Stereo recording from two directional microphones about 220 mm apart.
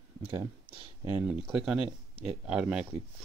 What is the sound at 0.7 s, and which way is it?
Speech, 20° right (ahead or behind).